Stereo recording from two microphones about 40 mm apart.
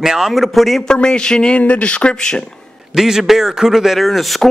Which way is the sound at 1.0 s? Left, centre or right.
Centre.